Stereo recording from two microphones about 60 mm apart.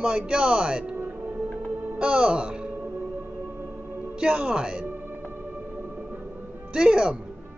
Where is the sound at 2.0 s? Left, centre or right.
Centre.